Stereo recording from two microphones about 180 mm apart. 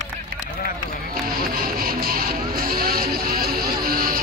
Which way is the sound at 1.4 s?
55° right (ahead or behind).